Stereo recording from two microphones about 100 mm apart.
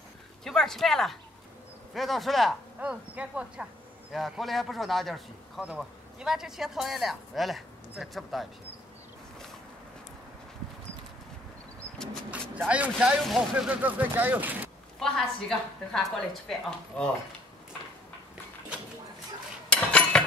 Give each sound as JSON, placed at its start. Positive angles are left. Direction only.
{"t": 0.4, "sound": "speech", "side_deg": 5}
{"t": 2.8, "sound": "speech", "side_deg": -10}
{"t": 4.1, "sound": "speech", "side_deg": 0}
{"t": 12.3, "sound": "speech", "side_deg": -15}
{"t": 13.2, "sound": "speech", "side_deg": 0}
{"t": 13.7, "sound": "speech", "side_deg": -15}
{"t": 15.0, "sound": "speech", "side_deg": 5}
{"t": 19.7, "sound": "cutlery", "side_deg": 10}